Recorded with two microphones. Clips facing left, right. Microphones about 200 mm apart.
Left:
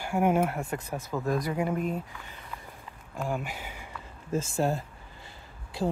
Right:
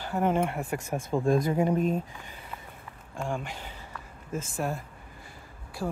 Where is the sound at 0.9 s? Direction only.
30° right (ahead or behind).